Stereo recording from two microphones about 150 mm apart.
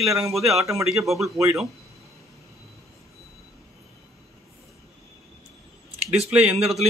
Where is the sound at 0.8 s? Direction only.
Centre (ahead or behind).